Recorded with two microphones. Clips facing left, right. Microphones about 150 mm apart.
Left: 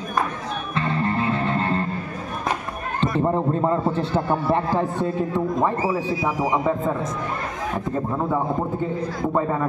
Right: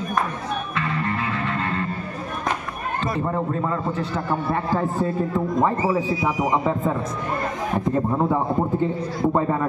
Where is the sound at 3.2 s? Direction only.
30° left (ahead or behind).